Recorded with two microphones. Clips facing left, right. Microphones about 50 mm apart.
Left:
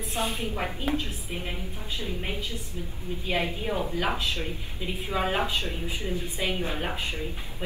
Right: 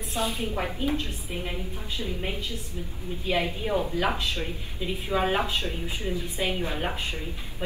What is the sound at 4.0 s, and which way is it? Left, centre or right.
Speech, centre.